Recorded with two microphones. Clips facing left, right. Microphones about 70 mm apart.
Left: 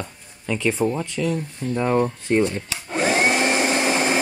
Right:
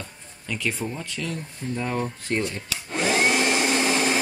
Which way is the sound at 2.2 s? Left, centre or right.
Centre.